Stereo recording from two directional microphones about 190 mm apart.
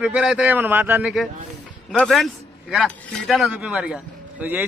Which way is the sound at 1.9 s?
Centre (ahead or behind).